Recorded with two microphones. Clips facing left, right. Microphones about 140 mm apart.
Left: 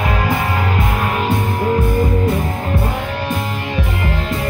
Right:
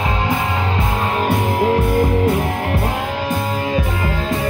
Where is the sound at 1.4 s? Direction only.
90° right.